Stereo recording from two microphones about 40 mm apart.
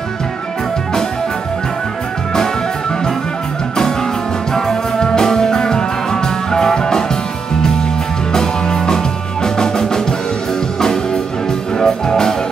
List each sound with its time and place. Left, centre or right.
4.6 s music: centre
8.3 s music: centre
11.8 s music: centre